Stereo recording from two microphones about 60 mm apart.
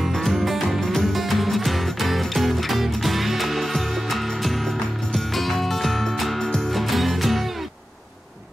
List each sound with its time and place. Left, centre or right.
0.0 s music: centre